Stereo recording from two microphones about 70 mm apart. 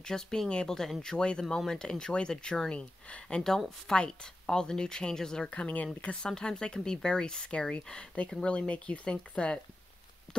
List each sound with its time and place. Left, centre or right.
0.0 s speech: centre
5.5 s speech: centre